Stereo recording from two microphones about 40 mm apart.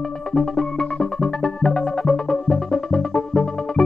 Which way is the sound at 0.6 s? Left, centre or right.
Centre.